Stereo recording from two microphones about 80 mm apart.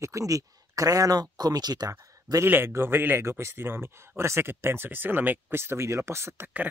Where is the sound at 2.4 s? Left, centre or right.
Right.